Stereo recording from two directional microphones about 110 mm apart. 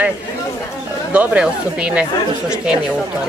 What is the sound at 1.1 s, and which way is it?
A woman's voice, 10° right (ahead or behind).